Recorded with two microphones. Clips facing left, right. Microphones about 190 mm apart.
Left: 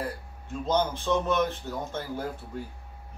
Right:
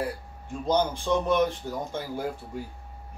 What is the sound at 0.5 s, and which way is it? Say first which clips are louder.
Speech: right 1 dB; 15° right (ahead or behind).